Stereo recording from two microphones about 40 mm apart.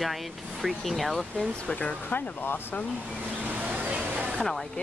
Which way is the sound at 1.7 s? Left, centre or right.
Left.